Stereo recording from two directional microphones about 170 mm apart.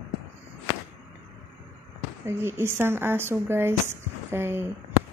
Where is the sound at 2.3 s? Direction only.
15° right (ahead or behind).